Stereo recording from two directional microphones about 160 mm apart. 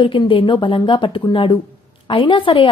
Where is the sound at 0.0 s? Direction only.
30° left (ahead or behind).